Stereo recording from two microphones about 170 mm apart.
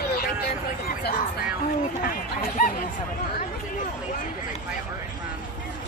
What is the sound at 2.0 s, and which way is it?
Speech, 60° left (ahead or behind).